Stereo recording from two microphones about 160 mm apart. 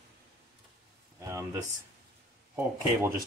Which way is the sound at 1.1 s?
20° right (ahead or behind).